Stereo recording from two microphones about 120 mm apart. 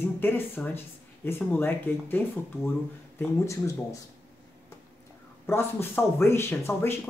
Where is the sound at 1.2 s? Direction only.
20° left (ahead or behind).